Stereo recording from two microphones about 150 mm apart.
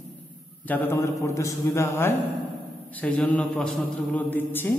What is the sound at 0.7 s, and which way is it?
A man's voice, 15° left (ahead or behind).